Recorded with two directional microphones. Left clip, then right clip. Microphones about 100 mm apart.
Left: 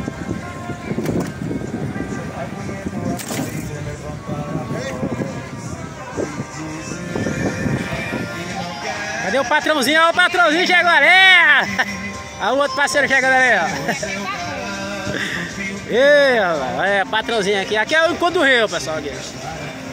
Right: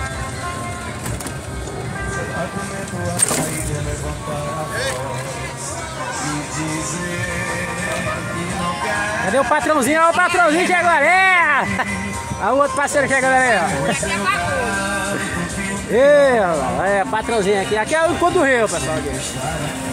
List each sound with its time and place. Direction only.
9.3 s speech: 15° left (ahead or behind)
9.8 s speech: 30° left (ahead or behind)
10.1 s speech: 55° left (ahead or behind)
10.7 s speech: 25° left (ahead or behind)
16.0 s speech: 25° left (ahead or behind)